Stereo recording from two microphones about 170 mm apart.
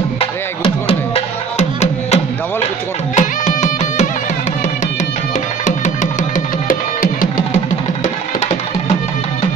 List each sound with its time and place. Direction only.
0.8 s music: 35° left (ahead or behind)
3.2 s music: 45° left (ahead or behind)
5.7 s music: 50° left (ahead or behind)